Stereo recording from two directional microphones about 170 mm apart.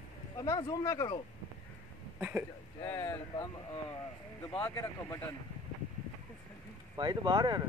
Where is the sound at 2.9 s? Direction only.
20° left (ahead or behind).